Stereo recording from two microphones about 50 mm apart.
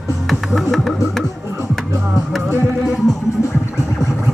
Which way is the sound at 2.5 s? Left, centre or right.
Right.